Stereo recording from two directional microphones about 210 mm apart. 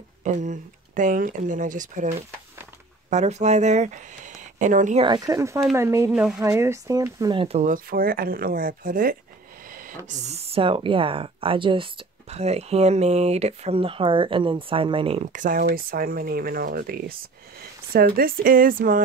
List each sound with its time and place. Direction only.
0.2 s speech: 35° right (ahead or behind)
5.0 s speech: 20° right (ahead or behind); by 19.0 s 40° right (ahead or behind)